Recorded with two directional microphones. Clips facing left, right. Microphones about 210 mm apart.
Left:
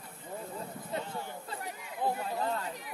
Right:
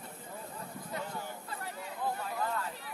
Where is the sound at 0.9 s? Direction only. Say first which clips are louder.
Left 2 dB; 25° left (ahead or behind).